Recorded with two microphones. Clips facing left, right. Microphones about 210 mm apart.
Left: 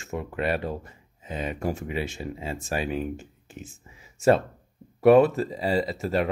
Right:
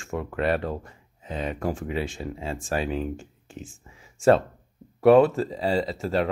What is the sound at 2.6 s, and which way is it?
Speech, 10° left (ahead or behind).